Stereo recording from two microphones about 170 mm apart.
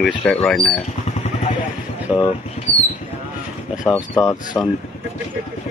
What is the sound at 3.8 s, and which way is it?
Speech, 5° left (ahead or behind).